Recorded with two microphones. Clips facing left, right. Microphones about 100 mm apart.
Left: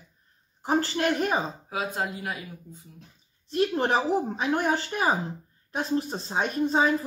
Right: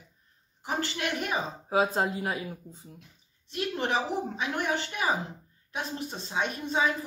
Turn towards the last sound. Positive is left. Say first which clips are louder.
# left 5 dB
turn(degrees=35)  # may be behind; listen again after turning